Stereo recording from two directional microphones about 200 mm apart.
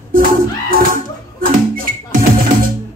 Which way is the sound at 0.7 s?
45° right (ahead or behind).